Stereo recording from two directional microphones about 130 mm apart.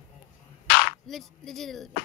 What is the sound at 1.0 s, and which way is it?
Speech, centre (ahead or behind).